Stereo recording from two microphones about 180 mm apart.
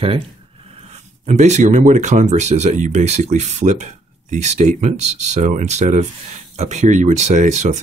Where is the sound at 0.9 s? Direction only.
40° right (ahead or behind).